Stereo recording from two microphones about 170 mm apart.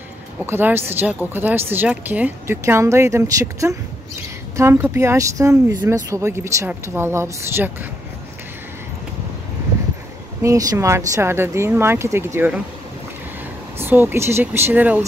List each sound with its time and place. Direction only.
0.5 s speech: 10° right (ahead or behind)
10.4 s speech: 20° right (ahead or behind)
13.8 s speech: 10° right (ahead or behind)